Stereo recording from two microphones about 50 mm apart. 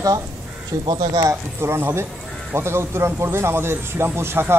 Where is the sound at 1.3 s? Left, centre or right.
Right.